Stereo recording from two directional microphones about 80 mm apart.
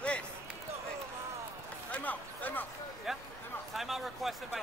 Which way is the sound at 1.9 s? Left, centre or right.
Left.